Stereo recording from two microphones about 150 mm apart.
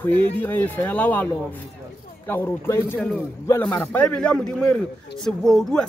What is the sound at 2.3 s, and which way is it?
Speech, 15° left (ahead or behind).